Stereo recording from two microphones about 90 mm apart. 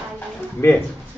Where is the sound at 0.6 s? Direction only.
25° left (ahead or behind).